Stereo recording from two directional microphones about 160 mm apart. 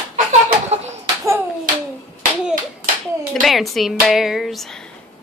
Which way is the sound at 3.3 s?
Centre (ahead or behind).